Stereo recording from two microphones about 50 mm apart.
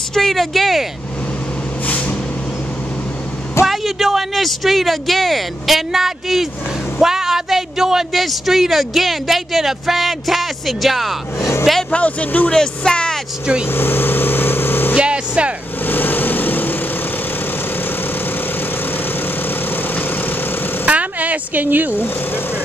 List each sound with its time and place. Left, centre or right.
0.1 s speech: centre
1.9 s vehicle: left
3.6 s speech: centre
11.9 s speech: left
12.9 s speech: centre
13.7 s vehicle: left
15.0 s vehicle: right
15.8 s vehicle: left
19.7 s vehicle: left
20.8 s vehicle: right
21.9 s speech: left